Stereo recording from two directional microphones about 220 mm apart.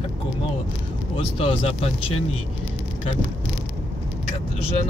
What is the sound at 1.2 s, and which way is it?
Speech, 25° left (ahead or behind).